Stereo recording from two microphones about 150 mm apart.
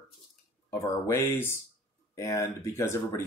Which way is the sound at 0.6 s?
20° left (ahead or behind).